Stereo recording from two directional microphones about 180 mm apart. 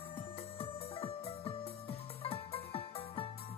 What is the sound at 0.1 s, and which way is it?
Music, 35° left (ahead or behind).